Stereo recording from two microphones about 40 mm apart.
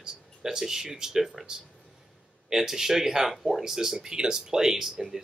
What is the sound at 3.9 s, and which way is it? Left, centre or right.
Speech, centre.